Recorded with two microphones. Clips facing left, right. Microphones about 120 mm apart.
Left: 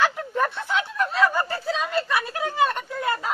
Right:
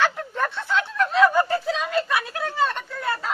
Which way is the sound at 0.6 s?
15° left (ahead or behind).